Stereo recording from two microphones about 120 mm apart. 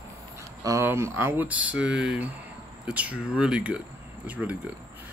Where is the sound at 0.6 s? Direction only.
25° right (ahead or behind).